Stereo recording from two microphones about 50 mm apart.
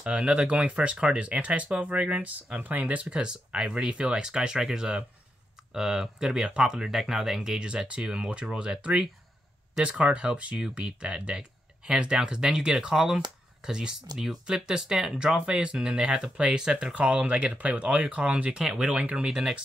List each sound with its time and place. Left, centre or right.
0.0 s speech: right
18.9 s speech: right